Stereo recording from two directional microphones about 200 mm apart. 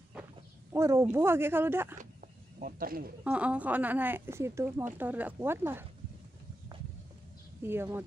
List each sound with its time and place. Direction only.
0.7 s speech: 15° right (ahead or behind)
2.6 s speech: 45° right (ahead or behind)
3.3 s speech: 5° right (ahead or behind)
7.6 s speech: 10° right (ahead or behind)